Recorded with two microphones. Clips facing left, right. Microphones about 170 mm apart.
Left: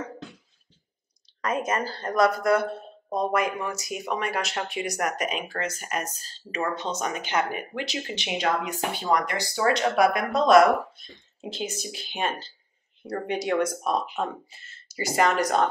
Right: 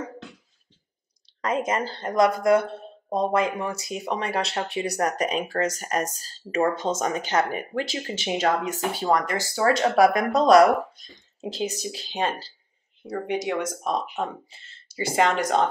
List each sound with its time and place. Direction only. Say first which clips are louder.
1.4 s speech: right 2 dB; 25° right (ahead or behind)
13.3 s speech: left 2 dB; 15° right (ahead or behind)
15.0 s speech: right 1 dB; 25° right (ahead or behind)